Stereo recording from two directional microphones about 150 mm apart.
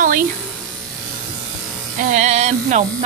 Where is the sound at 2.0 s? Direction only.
55° right (ahead or behind).